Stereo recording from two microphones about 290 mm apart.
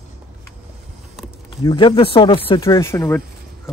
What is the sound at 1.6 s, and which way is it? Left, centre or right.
Speech, centre.